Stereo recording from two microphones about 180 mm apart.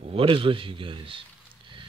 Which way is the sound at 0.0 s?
30° right (ahead or behind).